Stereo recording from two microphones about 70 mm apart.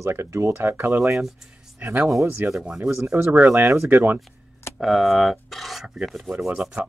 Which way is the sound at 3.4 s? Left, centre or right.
Right.